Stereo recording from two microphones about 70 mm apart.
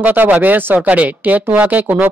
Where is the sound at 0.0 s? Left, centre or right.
Right.